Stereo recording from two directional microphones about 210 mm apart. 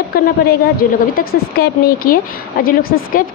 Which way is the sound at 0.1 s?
45° left (ahead or behind).